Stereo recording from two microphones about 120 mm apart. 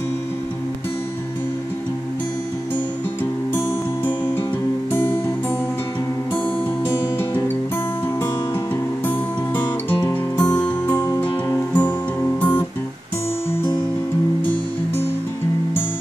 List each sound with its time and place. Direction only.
3.5 s music: 15° left (ahead or behind)
10.3 s music: 10° left (ahead or behind)